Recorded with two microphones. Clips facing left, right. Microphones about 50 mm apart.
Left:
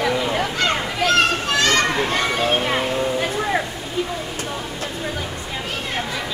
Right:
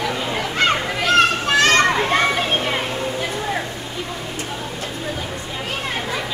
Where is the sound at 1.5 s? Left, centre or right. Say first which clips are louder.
Right 3 dB; right.